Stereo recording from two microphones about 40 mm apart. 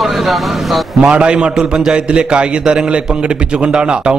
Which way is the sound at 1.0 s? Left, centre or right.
Right.